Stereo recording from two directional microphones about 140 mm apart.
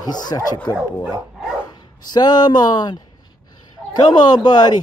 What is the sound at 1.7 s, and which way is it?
Speech, 30° left (ahead or behind).